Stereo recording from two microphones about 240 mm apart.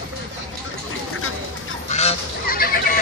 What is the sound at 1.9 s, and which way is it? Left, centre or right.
Goose, left.